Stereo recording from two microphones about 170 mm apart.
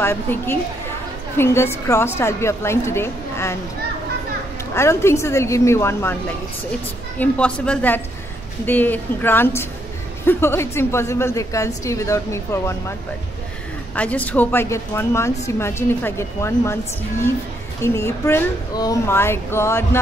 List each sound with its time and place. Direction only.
0.0 s a woman's voice: 15° left (ahead or behind)
4.7 s a woman's voice: 15° left (ahead or behind)
7.2 s a woman's voice: 5° left (ahead or behind)
13.9 s a woman's voice: 10° left (ahead or behind)
17.8 s a woman's voice: 15° left (ahead or behind)